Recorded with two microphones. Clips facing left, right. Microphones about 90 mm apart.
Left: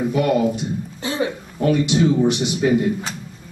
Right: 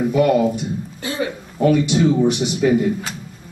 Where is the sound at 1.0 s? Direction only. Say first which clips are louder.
Left 1 dB; 20° left (ahead or behind).